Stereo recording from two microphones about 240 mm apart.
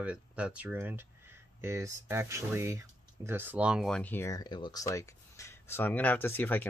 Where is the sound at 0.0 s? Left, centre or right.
Centre.